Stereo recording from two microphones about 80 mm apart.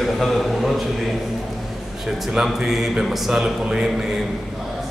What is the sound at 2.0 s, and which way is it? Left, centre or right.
A man's voice, centre.